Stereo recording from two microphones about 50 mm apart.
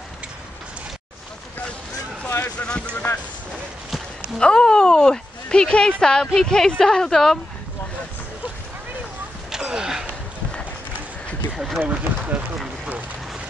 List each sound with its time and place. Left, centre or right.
2.2 s a sound: left
2.6 s speech: left
4.4 s speech: centre
9.5 s a sound: centre
11.5 s run: centre
11.9 s speech: right